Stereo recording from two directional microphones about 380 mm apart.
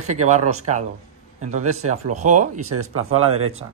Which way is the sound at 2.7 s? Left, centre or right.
Right.